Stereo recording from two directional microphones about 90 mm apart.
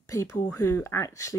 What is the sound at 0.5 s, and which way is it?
Speech, 30° left (ahead or behind).